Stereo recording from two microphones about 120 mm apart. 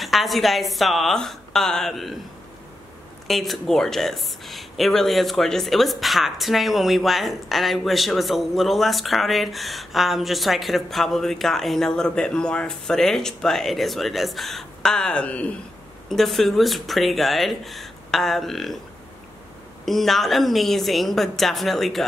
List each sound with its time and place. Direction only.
0.0 s speech: centre (ahead or behind)
3.3 s speech: centre (ahead or behind)
19.8 s speech: centre (ahead or behind)